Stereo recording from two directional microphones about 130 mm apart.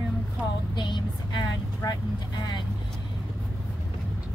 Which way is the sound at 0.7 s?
35° left (ahead or behind).